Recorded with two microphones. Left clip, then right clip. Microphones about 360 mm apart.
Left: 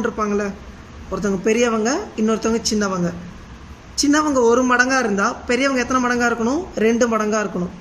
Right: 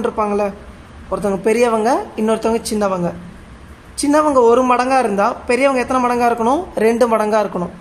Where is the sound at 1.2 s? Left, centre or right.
Centre.